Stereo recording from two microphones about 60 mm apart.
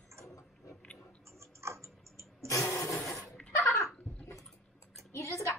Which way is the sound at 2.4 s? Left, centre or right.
Left.